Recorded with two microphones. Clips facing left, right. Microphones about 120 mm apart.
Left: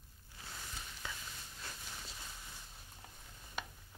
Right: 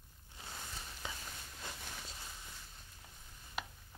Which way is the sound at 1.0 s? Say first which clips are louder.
Right 1 dB; 20° right (ahead or behind).